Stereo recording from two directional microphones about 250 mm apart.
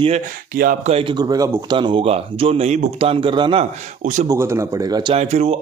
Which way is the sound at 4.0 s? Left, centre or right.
Right.